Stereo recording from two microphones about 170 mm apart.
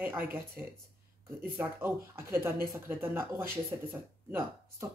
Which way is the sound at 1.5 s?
15° right (ahead or behind).